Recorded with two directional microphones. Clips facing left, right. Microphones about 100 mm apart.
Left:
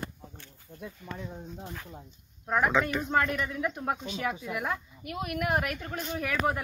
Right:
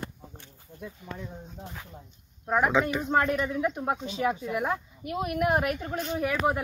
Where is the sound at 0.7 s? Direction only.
5° left (ahead or behind).